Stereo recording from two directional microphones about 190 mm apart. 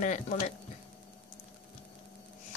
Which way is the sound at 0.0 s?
40° left (ahead or behind).